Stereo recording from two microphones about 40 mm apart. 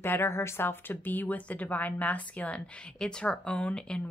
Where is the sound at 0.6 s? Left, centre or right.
Left.